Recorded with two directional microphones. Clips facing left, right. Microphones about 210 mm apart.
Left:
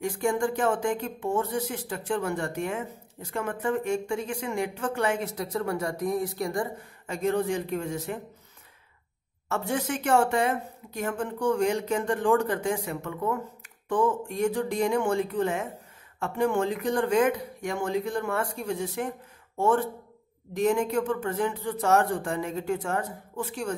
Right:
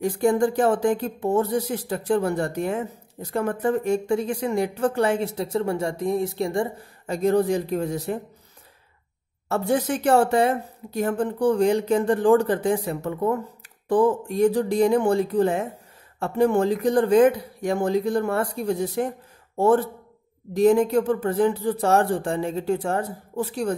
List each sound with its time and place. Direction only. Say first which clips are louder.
0.0 s speech: right 6 dB; 35° right (ahead or behind)
9.5 s speech: right 6 dB; 35° right (ahead or behind)